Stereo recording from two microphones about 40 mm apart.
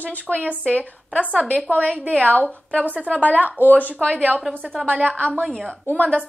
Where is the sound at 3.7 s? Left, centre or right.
Left.